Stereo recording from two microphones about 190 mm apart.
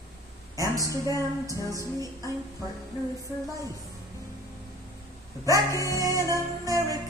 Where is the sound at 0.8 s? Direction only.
15° right (ahead or behind).